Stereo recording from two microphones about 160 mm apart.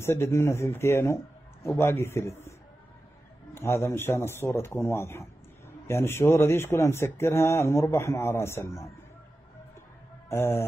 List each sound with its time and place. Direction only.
0.0 s speech: 15° left (ahead or behind)
3.5 s speech: 15° left (ahead or behind)
10.3 s speech: 15° left (ahead or behind)